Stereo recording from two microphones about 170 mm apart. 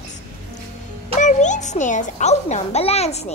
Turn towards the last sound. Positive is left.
turn(degrees=40)  # may be behind; listen again after turning